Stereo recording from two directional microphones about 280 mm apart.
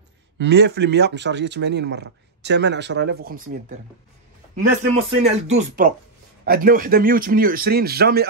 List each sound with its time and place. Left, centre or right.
0.4 s speech: right
4.6 s a man's voice: right